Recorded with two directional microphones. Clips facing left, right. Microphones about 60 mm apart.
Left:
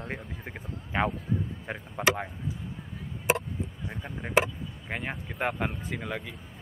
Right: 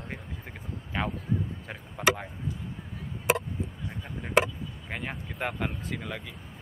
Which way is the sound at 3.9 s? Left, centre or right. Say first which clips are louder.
Right 1 dB; centre.